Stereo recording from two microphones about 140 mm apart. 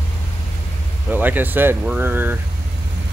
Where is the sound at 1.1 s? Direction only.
15° right (ahead or behind).